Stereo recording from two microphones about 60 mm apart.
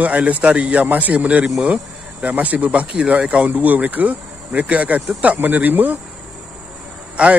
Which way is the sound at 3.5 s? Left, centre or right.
Right.